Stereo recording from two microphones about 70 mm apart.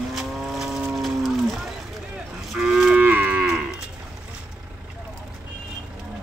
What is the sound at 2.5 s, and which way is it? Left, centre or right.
Moo, centre.